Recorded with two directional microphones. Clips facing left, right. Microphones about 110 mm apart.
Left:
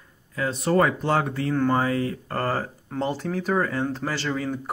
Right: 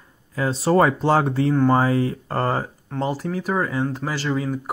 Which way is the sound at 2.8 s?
5° right (ahead or behind).